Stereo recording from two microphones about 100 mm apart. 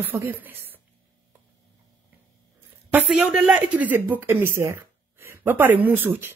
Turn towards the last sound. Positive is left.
turn(degrees=-20)  # may be behind; listen again after turning